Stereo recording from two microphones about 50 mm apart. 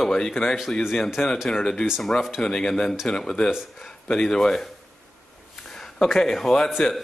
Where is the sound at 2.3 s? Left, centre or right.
Centre.